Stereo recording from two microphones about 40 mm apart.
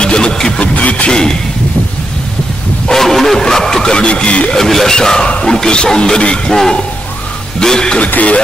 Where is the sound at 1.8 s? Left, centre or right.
Left.